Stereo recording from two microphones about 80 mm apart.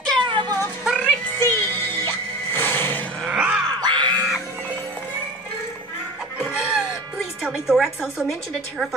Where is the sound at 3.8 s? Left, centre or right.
Right.